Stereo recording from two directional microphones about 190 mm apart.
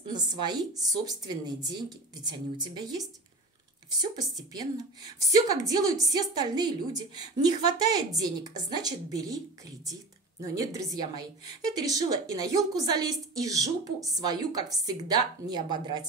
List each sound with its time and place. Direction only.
0.0 s a woman's voice: 25° right (ahead or behind)